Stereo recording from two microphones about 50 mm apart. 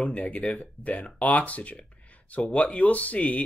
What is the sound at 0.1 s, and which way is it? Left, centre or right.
Speech, left.